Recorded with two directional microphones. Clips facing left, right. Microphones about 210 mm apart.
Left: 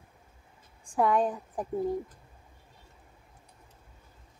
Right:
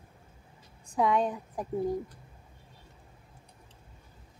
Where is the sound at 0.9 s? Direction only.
5° left (ahead or behind).